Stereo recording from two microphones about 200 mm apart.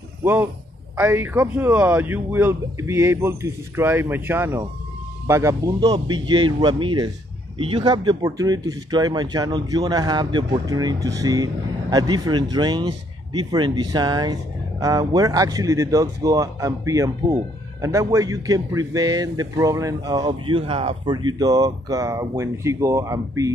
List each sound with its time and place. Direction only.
0.2 s a man's voice: 10° right (ahead or behind)